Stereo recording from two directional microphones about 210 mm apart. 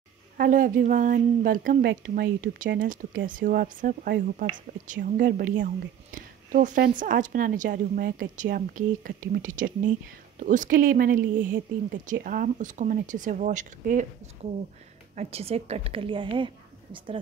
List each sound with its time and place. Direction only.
0.4 s a woman's voice: 40° right (ahead or behind); by 17.2 s 25° right (ahead or behind)